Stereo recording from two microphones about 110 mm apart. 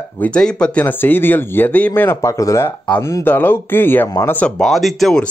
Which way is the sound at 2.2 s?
30° left (ahead or behind).